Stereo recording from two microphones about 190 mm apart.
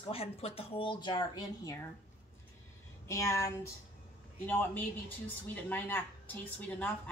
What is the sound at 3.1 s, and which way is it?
A woman's voice, 15° left (ahead or behind).